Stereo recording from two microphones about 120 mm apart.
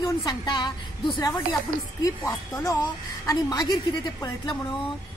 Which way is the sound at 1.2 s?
25° left (ahead or behind).